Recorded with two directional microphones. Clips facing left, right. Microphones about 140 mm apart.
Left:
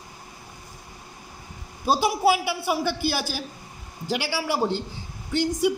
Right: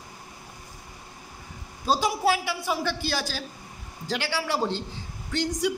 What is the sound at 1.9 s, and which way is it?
A woman's voice, 10° left (ahead or behind).